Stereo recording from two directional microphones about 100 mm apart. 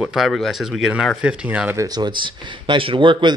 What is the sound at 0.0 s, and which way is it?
Speech, 5° right (ahead or behind).